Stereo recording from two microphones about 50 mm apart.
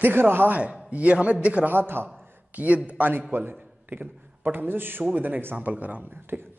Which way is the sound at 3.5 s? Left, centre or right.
Right.